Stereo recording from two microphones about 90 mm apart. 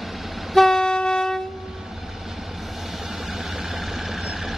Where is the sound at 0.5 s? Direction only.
5° left (ahead or behind).